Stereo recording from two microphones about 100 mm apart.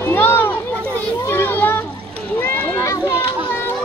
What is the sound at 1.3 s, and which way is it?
Children playing, 20° left (ahead or behind).